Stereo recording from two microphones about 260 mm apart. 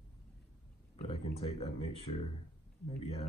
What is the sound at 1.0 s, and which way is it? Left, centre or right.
Speech, left.